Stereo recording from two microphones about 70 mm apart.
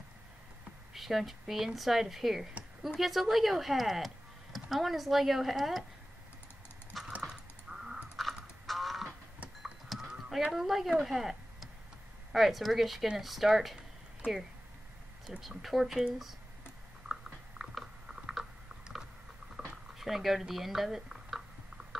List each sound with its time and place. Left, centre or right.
0.9 s speech: centre
7.1 s duck: centre
7.7 s a sound: centre
9.6 s livestock: centre
10.5 s speech: centre
15.4 s speech: centre
17.1 s chewing: centre
19.6 s boiling: centre
20.0 s speech: centre